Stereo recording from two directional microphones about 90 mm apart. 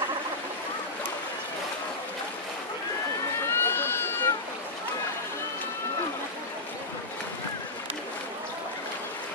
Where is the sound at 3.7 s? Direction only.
25° left (ahead or behind).